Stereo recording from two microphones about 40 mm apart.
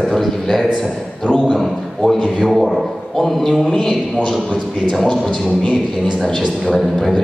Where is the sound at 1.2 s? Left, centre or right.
Centre.